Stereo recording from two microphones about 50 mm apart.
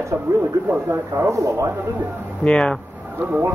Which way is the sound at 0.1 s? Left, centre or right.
Right.